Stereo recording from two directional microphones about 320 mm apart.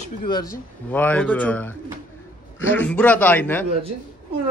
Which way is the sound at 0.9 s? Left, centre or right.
Centre.